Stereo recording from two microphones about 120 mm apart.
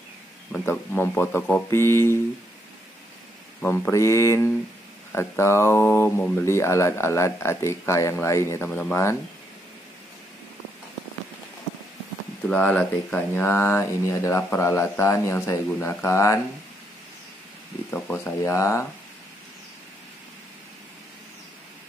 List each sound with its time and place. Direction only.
0.5 s speech: 15° left (ahead or behind)
3.6 s speech: 15° left (ahead or behind)
3.9 s speech: 25° left (ahead or behind)
8.6 s speech: 10° left (ahead or behind)
12.4 s speech: 10° left (ahead or behind)
17.9 s speech: 15° left (ahead or behind)